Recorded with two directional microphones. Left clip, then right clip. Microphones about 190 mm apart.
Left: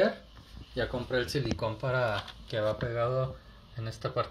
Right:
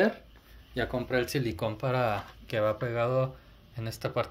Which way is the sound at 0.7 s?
35° right (ahead or behind).